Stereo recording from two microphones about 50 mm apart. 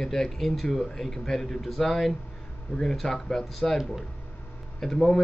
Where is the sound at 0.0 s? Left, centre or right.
Centre.